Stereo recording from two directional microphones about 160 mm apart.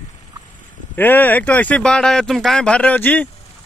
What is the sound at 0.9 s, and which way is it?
Speech, 10° left (ahead or behind).